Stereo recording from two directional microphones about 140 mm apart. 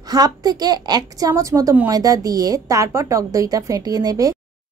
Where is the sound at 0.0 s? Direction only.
25° right (ahead or behind).